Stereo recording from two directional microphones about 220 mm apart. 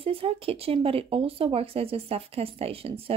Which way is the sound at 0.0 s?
25° right (ahead or behind).